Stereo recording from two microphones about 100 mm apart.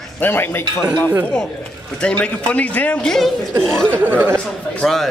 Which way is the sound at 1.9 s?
10° left (ahead or behind).